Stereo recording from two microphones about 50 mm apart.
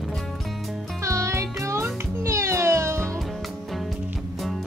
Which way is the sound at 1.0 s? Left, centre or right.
Right.